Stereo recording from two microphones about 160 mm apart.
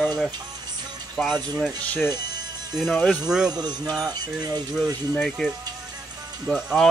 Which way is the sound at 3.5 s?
25° right (ahead or behind).